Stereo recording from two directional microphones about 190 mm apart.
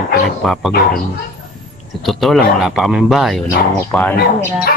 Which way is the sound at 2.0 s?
Centre (ahead or behind).